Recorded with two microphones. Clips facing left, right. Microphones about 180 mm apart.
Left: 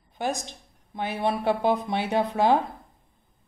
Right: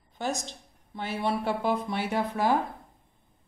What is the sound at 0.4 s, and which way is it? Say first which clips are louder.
Speech: left 1 dB; 15° left (ahead or behind).